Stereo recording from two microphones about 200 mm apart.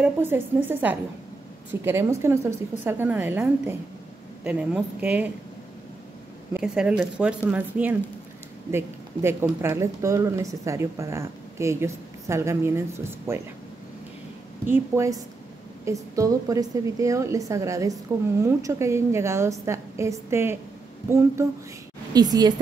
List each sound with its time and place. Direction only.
0.0 s speech: 10° right (ahead or behind)
6.5 s speech: 5° right (ahead or behind)
14.7 s a woman's voice: 15° right (ahead or behind)